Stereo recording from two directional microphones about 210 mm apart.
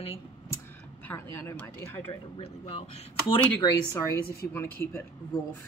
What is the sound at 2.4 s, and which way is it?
A man's voice, 25° left (ahead or behind).